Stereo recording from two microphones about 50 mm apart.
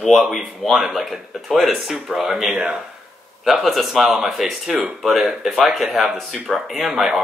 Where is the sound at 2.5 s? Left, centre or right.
Centre.